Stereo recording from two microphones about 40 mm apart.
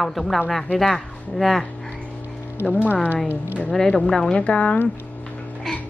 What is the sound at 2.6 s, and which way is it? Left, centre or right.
Speech, left.